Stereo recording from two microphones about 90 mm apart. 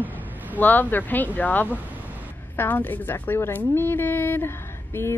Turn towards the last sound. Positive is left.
turn(degrees=25)  # may be behind; listen again after turning